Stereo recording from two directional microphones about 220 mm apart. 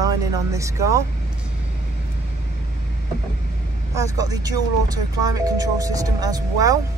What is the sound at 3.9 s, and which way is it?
Speech, 15° right (ahead or behind).